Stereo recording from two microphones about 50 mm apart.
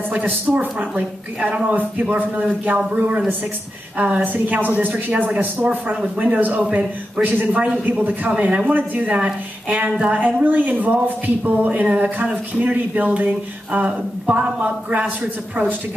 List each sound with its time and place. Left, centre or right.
0.5 s speech: right
0.9 s speech: right
4.0 s a man's voice: right
7.2 s speech: right
7.6 s speech: right